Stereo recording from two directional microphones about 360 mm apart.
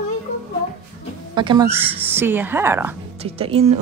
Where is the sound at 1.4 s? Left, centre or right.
Centre.